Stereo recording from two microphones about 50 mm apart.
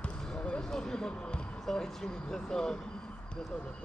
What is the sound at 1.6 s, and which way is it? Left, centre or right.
Speech, centre.